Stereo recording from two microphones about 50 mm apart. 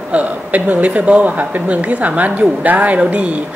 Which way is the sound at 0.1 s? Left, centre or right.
Right.